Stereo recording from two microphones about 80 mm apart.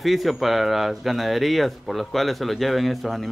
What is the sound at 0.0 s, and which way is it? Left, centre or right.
Speech, centre.